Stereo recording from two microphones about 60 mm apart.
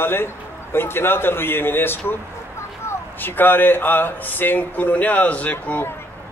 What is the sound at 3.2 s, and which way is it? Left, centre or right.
Speech, left.